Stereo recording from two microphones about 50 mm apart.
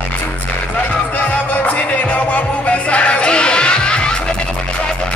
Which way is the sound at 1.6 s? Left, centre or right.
Left.